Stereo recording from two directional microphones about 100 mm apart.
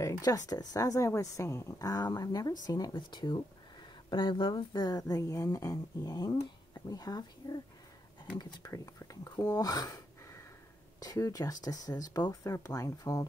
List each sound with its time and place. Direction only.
0.0 s speech: 40° left (ahead or behind)